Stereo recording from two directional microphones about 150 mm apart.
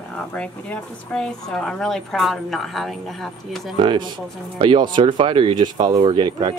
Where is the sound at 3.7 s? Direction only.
35° right (ahead or behind).